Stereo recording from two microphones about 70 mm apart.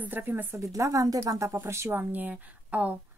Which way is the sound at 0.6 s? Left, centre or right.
Right.